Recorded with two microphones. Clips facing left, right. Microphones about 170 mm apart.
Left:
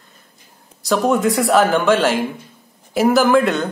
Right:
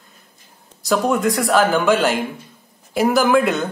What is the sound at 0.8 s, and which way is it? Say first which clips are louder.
Speech: left 2 dB; centre (ahead or behind).